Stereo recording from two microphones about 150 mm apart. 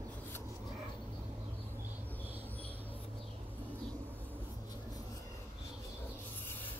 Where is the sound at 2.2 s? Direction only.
15° right (ahead or behind).